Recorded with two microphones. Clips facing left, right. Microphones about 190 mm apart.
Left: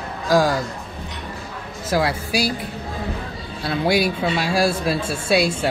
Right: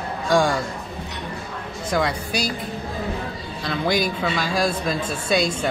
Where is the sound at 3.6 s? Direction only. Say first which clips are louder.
Left 3 dB; 5° left (ahead or behind).